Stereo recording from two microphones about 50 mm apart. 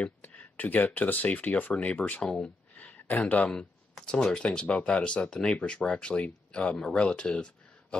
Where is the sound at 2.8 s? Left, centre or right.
Left.